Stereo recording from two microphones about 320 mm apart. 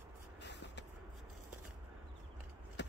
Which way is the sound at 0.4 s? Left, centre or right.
Left.